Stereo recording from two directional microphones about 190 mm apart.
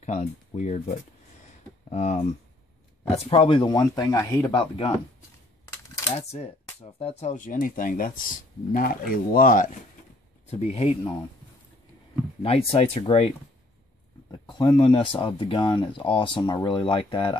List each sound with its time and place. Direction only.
0.0 s speech: 40° left (ahead or behind)
6.1 s speech: 30° left (ahead or behind)
10.4 s speech: 35° left (ahead or behind)
12.4 s speech: 30° left (ahead or behind)
14.5 s speech: 20° left (ahead or behind)